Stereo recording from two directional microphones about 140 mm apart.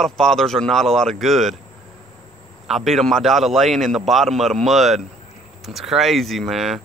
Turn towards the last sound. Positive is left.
turn(degrees=0)  # may be behind; listen again after turning